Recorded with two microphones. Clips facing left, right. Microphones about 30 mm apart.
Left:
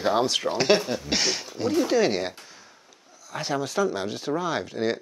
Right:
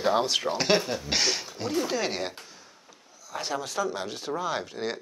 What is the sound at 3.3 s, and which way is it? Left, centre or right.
Speech, centre.